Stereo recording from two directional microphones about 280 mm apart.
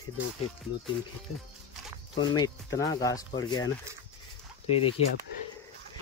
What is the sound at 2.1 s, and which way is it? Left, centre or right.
Speech, centre.